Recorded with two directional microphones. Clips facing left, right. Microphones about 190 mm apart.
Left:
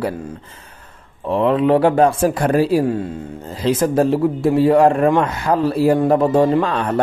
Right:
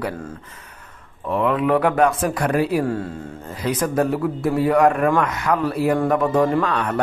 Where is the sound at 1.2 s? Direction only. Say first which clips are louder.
Left 4 dB; 30° left (ahead or behind).